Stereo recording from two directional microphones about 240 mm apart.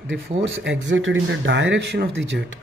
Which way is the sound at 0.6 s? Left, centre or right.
Right.